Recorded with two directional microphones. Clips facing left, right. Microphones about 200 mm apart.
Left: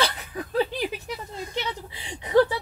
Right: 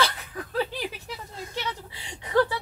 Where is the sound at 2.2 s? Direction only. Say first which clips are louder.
Left 4 dB; 20° left (ahead or behind).